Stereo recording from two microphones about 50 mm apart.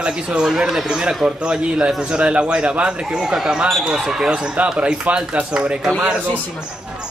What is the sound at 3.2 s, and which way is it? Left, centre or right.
Speech, centre.